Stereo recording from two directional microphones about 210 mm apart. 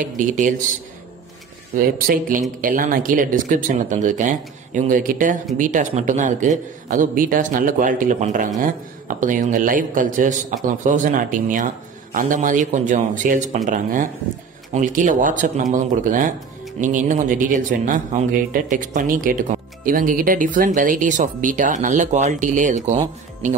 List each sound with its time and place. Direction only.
0.0 s speech: 40° right (ahead or behind)
1.8 s speech: 40° right (ahead or behind)